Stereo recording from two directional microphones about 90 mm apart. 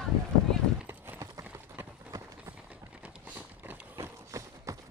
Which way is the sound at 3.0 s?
20° right (ahead or behind).